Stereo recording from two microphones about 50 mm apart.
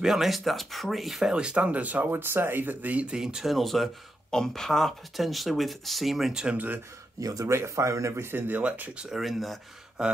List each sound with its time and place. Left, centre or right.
0.0 s speech: centre
1.3 s speech: right
3.1 s speech: centre
3.5 s speech: centre
6.3 s speech: centre
7.4 s speech: right
8.2 s speech: right
8.9 s speech: centre
9.2 s speech: centre
10.0 s speech: centre